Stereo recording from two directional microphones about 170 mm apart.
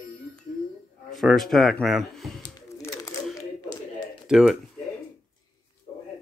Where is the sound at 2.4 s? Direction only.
20° left (ahead or behind).